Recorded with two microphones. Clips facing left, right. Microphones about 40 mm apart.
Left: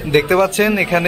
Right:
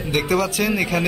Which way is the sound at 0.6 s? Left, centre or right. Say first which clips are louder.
Left 5 dB; left.